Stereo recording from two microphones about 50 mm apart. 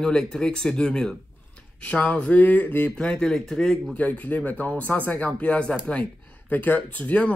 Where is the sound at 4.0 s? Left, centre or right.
Left.